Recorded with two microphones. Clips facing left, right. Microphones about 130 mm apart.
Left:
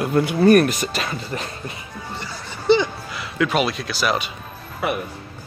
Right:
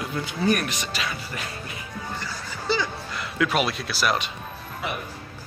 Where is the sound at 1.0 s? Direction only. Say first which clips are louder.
Left 4 dB; 35° left (ahead or behind).